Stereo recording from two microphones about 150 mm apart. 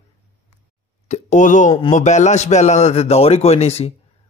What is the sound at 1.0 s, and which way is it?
Speech, 55° left (ahead or behind).